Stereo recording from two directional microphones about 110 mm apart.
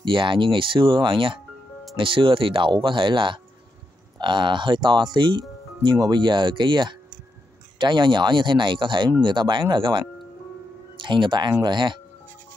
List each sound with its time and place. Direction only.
0.0 s speech: 50° right (ahead or behind)